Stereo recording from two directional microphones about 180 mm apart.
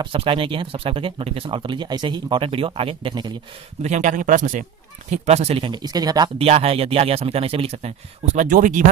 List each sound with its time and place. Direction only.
0.0 s speech: 30° right (ahead or behind)
3.8 s speech: 40° right (ahead or behind); by 6.3 s 20° right (ahead or behind)
6.3 s speech: 35° right (ahead or behind)
8.4 s speech: 45° right (ahead or behind)